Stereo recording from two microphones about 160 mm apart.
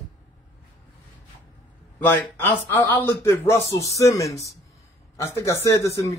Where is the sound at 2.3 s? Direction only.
10° left (ahead or behind).